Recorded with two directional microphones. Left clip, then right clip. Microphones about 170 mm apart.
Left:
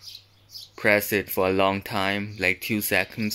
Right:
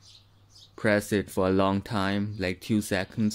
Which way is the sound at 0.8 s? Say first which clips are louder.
Left 4 dB; 20° right (ahead or behind).